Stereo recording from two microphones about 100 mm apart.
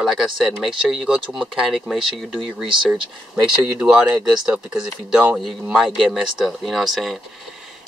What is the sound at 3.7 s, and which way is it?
Speech, 10° right (ahead or behind).